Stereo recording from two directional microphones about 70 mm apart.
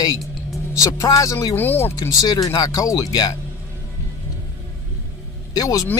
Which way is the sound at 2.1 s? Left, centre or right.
Left.